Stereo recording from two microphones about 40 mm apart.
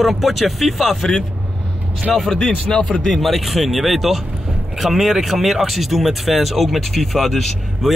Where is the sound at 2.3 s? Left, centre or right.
Left.